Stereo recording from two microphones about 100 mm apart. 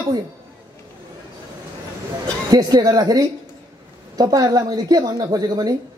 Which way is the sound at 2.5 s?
40° right (ahead or behind).